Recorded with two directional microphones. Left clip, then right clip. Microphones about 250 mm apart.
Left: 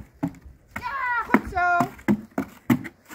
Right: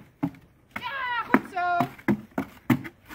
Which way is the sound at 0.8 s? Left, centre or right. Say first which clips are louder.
Left 4 dB; right.